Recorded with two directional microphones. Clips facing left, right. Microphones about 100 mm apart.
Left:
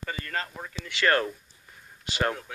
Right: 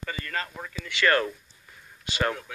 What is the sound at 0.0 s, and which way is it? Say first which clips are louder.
Speech: even; 30° left (ahead or behind).